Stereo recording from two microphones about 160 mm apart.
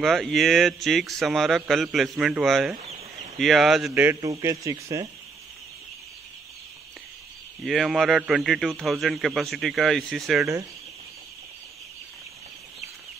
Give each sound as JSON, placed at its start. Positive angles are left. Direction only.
{"t": 0.0, "sound": "speech", "side_deg": 0}
{"t": 3.9, "sound": "a man's voice", "side_deg": -15}
{"t": 7.6, "sound": "speech", "side_deg": 0}